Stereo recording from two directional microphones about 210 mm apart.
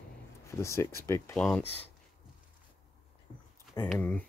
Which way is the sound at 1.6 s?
30° left (ahead or behind).